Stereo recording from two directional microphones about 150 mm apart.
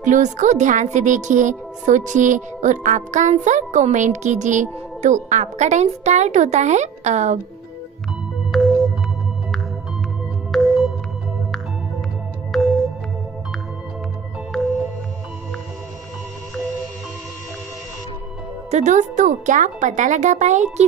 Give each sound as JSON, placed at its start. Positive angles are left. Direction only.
{"t": 0.0, "sound": "a woman's voice", "side_deg": -55}
{"t": 8.5, "sound": "music", "side_deg": 0}
{"t": 10.5, "sound": "music", "side_deg": 0}
{"t": 12.5, "sound": "music", "side_deg": 0}
{"t": 14.5, "sound": "music", "side_deg": 0}
{"t": 18.7, "sound": "a woman's voice", "side_deg": -50}